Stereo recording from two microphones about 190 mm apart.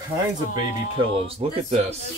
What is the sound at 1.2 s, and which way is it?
Speech, 30° right (ahead or behind).